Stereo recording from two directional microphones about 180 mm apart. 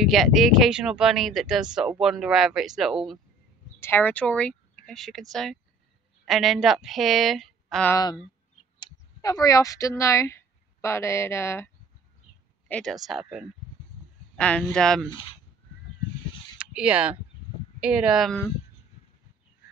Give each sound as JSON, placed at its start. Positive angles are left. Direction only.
{"t": 0.0, "sound": "speech", "side_deg": 0}
{"t": 3.8, "sound": "speech", "side_deg": 10}
{"t": 7.9, "sound": "speech", "side_deg": 20}
{"t": 12.6, "sound": "speech", "side_deg": 5}
{"t": 16.5, "sound": "speech", "side_deg": -5}